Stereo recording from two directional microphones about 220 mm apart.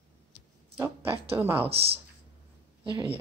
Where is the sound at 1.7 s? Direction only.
25° right (ahead or behind).